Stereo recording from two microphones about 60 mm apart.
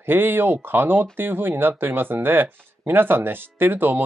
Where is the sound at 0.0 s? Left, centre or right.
Right.